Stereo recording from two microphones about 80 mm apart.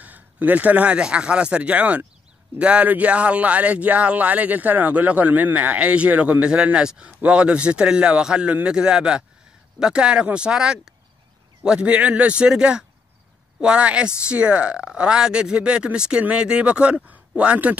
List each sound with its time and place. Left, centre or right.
0.0 s speech: right